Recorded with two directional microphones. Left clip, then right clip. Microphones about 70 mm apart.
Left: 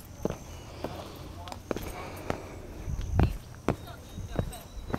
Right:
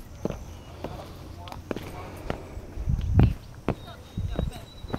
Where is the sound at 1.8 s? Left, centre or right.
Centre.